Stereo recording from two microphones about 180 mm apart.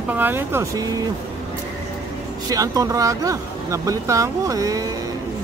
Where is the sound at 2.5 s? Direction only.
20° right (ahead or behind).